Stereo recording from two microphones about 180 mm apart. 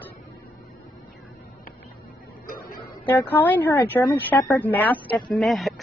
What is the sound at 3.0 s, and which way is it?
A woman's voice, 10° left (ahead or behind).